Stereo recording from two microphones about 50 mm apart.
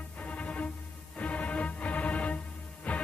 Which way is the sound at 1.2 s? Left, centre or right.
Left.